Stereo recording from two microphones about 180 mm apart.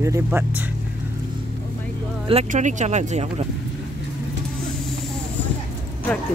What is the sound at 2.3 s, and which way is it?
Speech, 40° right (ahead or behind).